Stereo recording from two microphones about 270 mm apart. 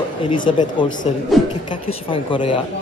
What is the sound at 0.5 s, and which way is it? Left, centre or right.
Speech, left.